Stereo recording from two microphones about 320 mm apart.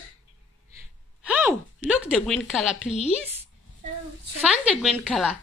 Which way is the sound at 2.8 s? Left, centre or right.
Left.